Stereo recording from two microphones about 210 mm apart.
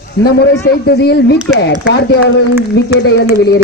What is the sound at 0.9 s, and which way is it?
A man's voice, 50° left (ahead or behind).